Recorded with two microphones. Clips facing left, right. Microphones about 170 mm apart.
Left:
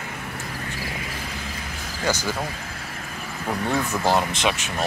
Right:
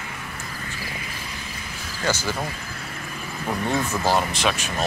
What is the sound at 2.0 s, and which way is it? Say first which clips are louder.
Speech: even; 15° left (ahead or behind).